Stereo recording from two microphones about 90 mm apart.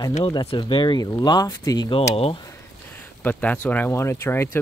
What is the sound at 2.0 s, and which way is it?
Speech, 90° left.